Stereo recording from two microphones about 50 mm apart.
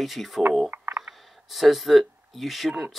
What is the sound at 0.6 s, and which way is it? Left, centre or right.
Frog, right.